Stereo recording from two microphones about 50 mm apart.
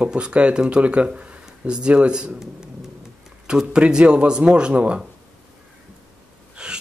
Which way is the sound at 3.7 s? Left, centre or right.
Centre.